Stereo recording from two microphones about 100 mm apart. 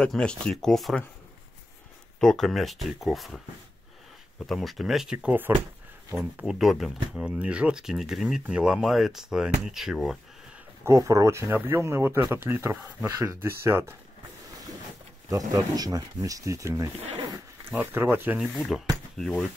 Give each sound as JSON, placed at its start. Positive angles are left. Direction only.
{"t": 0.0, "sound": "speech", "side_deg": 10}
{"t": 2.1, "sound": "speech", "side_deg": 5}
{"t": 4.5, "sound": "speech", "side_deg": 0}
{"t": 6.3, "sound": "speech", "side_deg": -5}
{"t": 10.8, "sound": "speech", "side_deg": -30}
{"t": 15.2, "sound": "speech", "side_deg": -35}
{"t": 17.7, "sound": "speech", "side_deg": -20}
{"t": 19.1, "sound": "speech", "side_deg": 5}